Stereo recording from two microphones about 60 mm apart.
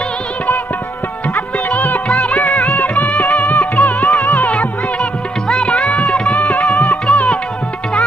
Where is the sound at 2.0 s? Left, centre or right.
Centre.